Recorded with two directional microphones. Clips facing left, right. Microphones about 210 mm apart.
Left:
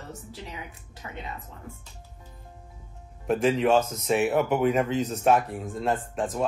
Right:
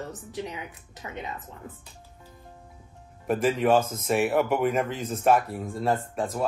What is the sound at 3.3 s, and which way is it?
Speech, centre (ahead or behind).